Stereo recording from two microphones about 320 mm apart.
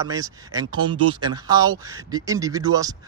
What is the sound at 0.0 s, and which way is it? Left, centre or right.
Speech, centre.